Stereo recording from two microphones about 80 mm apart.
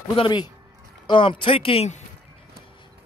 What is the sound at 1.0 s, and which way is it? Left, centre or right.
Speech, left.